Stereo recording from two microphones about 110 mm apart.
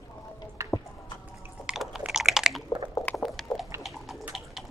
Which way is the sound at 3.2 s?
Centre (ahead or behind).